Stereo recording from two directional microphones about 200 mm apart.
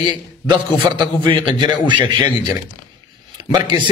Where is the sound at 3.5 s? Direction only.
20° right (ahead or behind).